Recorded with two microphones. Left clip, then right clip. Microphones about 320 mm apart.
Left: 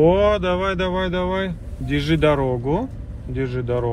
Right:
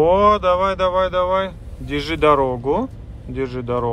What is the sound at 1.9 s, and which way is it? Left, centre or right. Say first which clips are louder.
Speech: even; right.